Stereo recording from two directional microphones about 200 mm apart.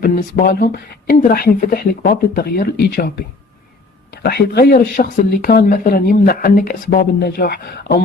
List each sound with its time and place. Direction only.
0.0 s speech: 50° left (ahead or behind)
4.1 s speech: 55° left (ahead or behind)